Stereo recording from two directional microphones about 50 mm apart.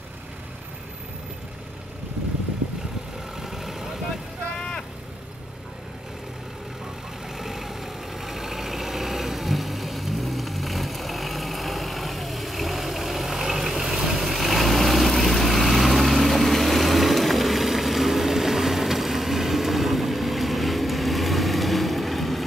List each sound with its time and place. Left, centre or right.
3.3 s vehicle: centre
4.6 s vehicle: centre
7.3 s vehicle: centre